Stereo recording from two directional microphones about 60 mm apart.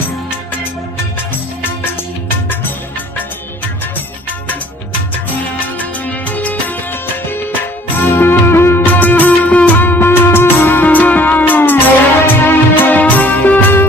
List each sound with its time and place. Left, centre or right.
5.8 s music: left
8.0 s music: left